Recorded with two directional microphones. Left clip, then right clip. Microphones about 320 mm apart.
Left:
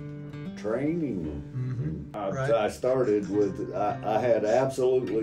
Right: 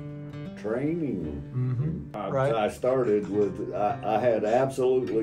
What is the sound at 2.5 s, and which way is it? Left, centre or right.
Speech, centre.